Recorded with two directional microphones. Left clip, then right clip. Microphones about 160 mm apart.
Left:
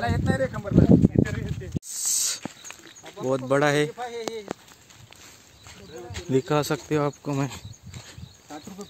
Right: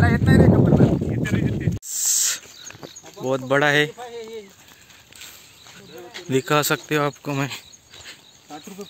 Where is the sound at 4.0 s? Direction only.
40° right (ahead or behind).